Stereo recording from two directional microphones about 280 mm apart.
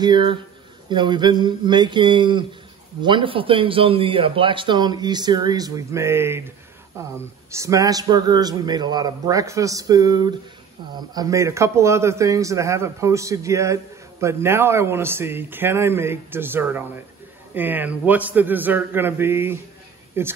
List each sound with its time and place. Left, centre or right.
0.0 s a man's voice: centre
7.5 s a man's voice: centre